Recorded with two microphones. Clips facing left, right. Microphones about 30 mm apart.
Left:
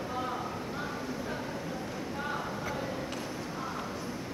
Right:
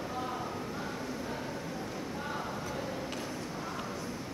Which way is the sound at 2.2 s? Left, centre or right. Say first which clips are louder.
Left 3 dB; centre.